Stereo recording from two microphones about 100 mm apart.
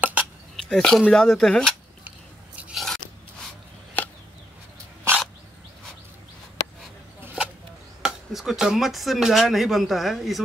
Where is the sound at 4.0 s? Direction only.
20° left (ahead or behind).